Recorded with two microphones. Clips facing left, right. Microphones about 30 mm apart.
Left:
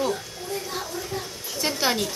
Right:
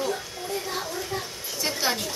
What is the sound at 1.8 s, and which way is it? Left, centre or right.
Speech, centre.